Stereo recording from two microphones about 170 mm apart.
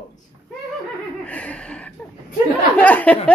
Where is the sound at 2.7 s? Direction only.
10° left (ahead or behind).